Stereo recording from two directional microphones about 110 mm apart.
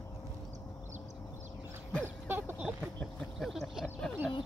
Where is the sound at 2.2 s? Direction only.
15° right (ahead or behind).